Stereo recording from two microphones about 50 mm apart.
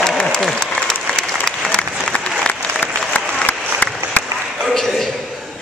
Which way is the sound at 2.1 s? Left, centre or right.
Left.